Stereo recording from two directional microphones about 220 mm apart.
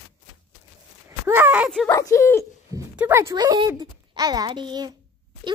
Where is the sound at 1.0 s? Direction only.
10° right (ahead or behind).